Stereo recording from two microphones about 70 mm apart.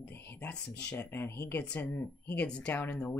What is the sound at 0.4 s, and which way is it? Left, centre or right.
Speech, centre.